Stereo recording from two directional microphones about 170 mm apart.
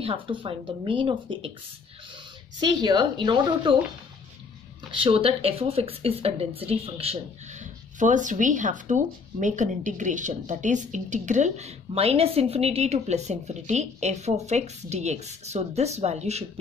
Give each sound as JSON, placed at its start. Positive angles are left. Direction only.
{"t": 0.0, "sound": "speech", "side_deg": -30}
{"t": 2.6, "sound": "speech", "side_deg": -25}
{"t": 4.9, "sound": "speech", "side_deg": -30}